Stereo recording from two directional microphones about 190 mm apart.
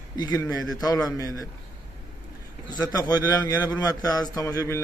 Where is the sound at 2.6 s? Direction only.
20° left (ahead or behind).